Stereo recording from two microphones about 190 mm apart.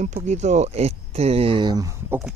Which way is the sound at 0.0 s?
40° right (ahead or behind).